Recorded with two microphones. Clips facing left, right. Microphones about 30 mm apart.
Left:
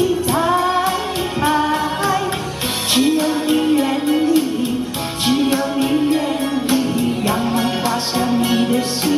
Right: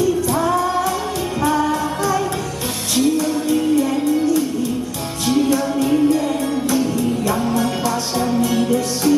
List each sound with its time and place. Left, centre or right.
0.0 s music: left
5.2 s music: left